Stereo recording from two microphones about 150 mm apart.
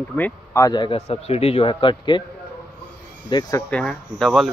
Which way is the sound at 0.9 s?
45° left (ahead or behind).